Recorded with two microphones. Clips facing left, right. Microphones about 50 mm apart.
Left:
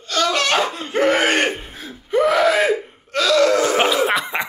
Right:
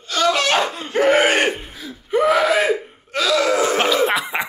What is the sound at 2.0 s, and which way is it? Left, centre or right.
Gasp, centre.